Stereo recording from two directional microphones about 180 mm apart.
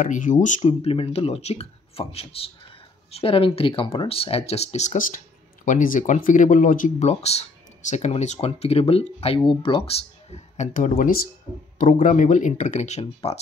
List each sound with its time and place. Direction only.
0.0 s speech: 45° left (ahead or behind)